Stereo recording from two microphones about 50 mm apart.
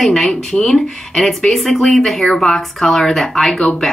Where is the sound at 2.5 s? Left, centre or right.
Centre.